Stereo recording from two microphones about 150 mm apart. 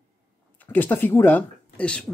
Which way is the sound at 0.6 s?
10° left (ahead or behind).